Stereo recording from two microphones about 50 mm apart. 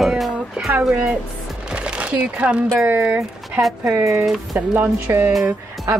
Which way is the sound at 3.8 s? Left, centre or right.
Right.